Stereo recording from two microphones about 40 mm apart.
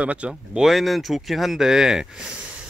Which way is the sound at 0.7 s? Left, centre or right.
Centre.